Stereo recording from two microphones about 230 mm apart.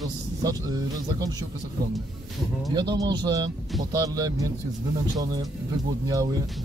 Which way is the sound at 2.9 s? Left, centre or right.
Centre.